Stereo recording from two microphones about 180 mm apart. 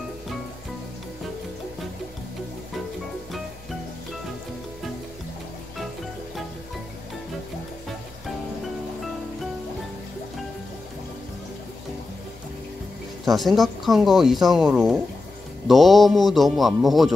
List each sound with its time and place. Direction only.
13.2 s speech: centre (ahead or behind)